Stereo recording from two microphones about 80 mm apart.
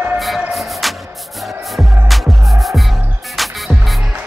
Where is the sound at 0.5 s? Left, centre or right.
Centre.